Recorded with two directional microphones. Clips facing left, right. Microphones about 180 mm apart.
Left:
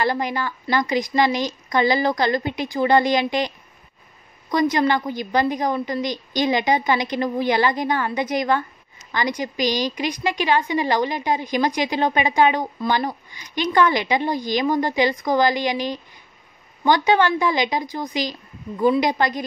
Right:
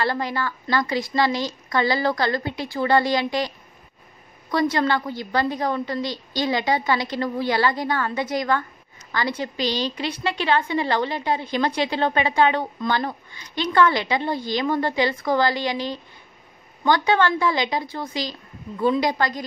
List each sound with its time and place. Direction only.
0.0 s a woman's voice: 15° left (ahead or behind)